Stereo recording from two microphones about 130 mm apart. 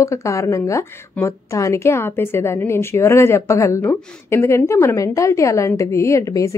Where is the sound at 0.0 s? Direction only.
25° left (ahead or behind).